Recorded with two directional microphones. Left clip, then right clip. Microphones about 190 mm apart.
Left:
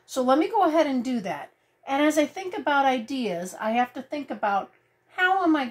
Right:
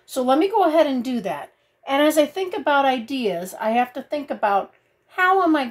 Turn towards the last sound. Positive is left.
turn(degrees=-25)  # may be behind; listen again after turning